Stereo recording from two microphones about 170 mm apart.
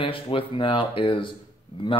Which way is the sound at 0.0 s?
30° left (ahead or behind).